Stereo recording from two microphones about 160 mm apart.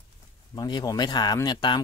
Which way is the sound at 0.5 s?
25° left (ahead or behind).